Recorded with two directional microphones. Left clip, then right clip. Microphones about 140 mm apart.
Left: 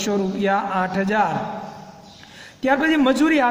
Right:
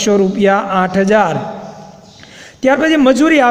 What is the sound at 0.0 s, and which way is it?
A man's voice, 35° right (ahead or behind).